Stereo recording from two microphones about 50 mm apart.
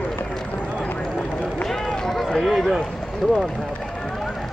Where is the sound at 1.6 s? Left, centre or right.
Centre.